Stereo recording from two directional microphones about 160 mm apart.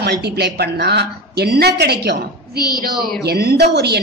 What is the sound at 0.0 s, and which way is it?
A woman's voice, 90° right.